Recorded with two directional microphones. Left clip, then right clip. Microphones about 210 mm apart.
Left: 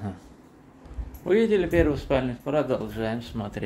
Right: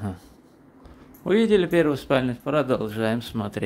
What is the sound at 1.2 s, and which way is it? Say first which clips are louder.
Speech: right 2 dB; 20° right (ahead or behind).